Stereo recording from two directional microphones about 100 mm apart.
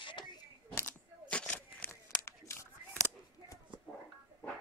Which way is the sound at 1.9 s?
30° left (ahead or behind).